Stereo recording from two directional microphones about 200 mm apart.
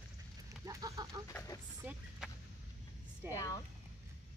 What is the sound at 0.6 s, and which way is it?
Chicken, 15° right (ahead or behind).